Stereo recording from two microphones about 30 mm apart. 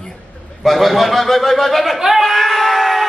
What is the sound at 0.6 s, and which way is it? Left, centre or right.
A man's voice, centre.